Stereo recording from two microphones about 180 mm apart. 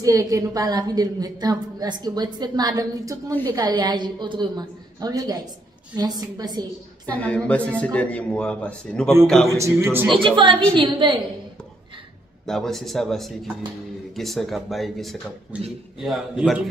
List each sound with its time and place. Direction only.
0.0 s a woman's voice: 20° right (ahead or behind)
7.1 s a man's voice: 10° left (ahead or behind)
9.5 s a man's voice: 15° right (ahead or behind)
10.1 s a woman's voice: 25° right (ahead or behind)
12.4 s speech: centre (ahead or behind)